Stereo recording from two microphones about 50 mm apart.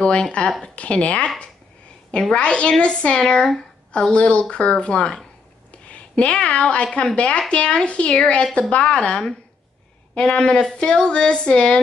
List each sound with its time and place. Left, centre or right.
0.0 s speech: left
2.3 s speech: left